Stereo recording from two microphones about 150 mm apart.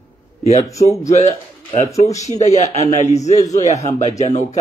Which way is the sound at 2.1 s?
50° left (ahead or behind).